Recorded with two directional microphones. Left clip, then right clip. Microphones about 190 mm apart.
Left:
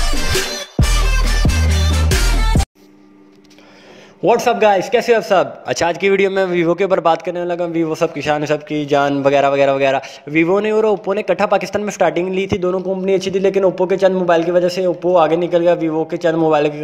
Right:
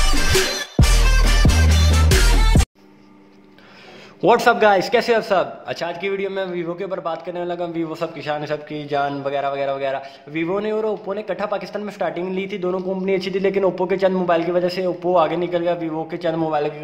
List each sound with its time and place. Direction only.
0.3 s music: centre (ahead or behind)
4.2 s a man's voice: centre (ahead or behind)
5.7 s a man's voice: 40° left (ahead or behind)
7.3 s a man's voice: 30° left (ahead or behind)